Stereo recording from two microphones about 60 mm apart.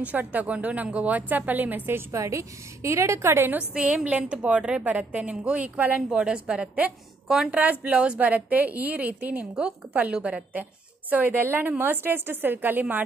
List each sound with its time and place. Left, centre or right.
0.0 s a woman's voice: right
2.2 s a woman's voice: right
3.7 s a woman's voice: centre
6.0 s a woman's voice: centre; by 13.0 s right